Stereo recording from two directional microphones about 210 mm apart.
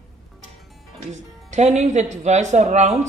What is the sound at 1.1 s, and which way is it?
Speech, 35° right (ahead or behind).